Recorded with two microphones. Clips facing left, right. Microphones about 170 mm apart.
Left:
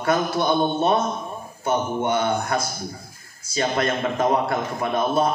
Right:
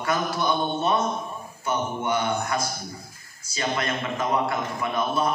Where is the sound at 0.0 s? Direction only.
50° left (ahead or behind).